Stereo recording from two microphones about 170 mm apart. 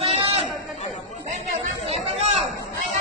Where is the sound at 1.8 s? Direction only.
35° right (ahead or behind).